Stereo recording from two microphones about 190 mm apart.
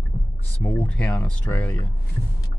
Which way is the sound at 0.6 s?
10° left (ahead or behind).